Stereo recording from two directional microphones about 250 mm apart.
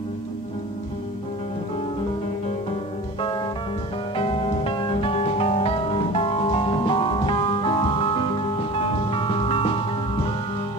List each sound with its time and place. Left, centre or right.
3.2 s music: centre